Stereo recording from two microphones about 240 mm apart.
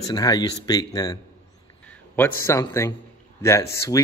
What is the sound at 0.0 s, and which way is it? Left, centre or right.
A man's voice, centre.